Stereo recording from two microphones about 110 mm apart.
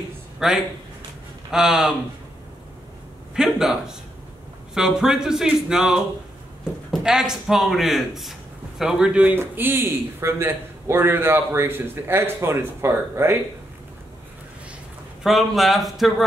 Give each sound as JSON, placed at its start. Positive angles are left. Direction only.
{"t": 0.4, "sound": "speech", "side_deg": -5}
{"t": 3.3, "sound": "a man's voice", "side_deg": -5}
{"t": 15.2, "sound": "speech", "side_deg": 0}